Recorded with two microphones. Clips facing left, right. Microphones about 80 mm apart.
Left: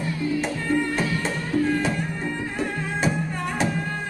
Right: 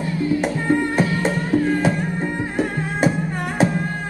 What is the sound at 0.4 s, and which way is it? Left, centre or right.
Music, right.